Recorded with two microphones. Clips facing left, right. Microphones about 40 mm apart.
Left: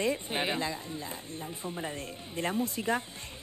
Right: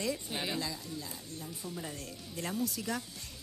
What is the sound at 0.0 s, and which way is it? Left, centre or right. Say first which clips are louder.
Speech: left 5 dB; left.